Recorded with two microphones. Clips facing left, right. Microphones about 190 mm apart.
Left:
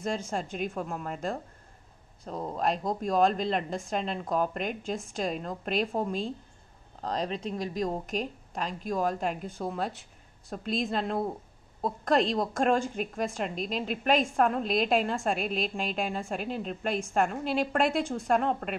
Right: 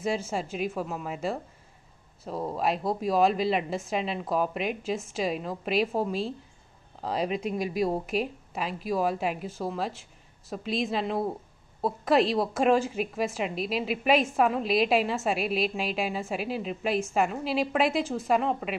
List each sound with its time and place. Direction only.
0.0 s a woman's voice: 5° right (ahead or behind)